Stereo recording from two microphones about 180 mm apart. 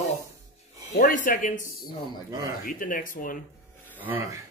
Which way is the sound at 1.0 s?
50° left (ahead or behind).